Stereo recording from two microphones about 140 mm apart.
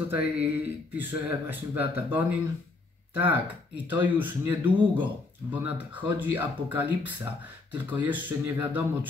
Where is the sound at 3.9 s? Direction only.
15° right (ahead or behind).